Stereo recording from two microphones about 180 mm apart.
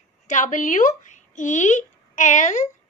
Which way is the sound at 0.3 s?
45° left (ahead or behind).